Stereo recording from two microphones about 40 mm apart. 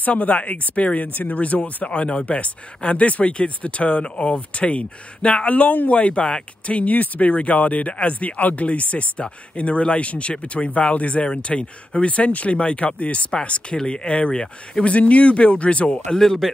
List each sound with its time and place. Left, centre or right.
0.0 s speech: left
16.1 s speech: centre